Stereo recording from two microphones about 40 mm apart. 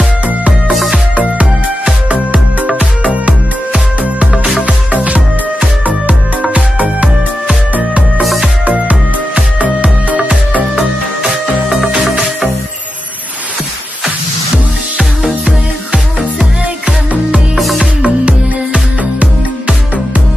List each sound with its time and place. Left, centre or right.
0.7 s music: centre
2.0 s music: right
4.6 s music: right
8.2 s music: centre
8.6 s music: right
15.4 s music: centre
17.6 s music: centre
18.0 s music: right